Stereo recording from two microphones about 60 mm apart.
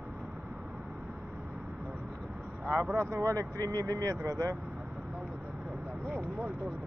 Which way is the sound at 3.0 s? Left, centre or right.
Right.